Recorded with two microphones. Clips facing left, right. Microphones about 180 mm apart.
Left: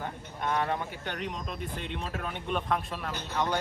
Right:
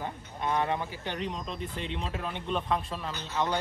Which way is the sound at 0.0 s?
5° right (ahead or behind).